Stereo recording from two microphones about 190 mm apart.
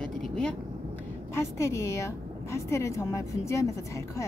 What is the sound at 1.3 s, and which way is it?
A woman's voice, 15° left (ahead or behind).